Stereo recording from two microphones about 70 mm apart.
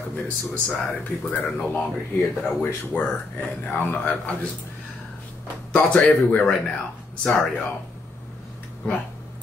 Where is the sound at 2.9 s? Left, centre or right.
Left.